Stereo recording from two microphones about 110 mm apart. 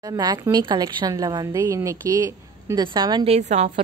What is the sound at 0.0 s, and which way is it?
A woman's voice, 35° right (ahead or behind).